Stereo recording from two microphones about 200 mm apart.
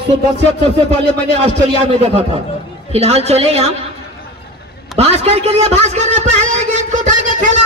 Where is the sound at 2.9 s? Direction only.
30° right (ahead or behind).